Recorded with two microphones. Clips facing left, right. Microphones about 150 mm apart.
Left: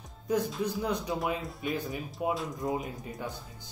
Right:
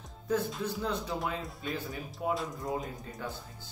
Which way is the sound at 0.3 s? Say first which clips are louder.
Left 2 dB; 15° left (ahead or behind).